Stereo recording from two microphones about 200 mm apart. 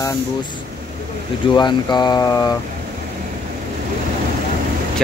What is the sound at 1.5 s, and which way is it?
Speech, 20° left (ahead or behind).